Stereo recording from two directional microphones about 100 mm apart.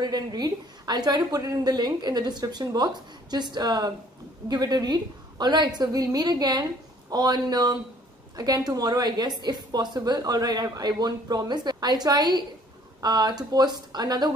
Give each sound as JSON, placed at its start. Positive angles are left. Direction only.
{"t": 0.0, "sound": "a woman's voice", "side_deg": -45}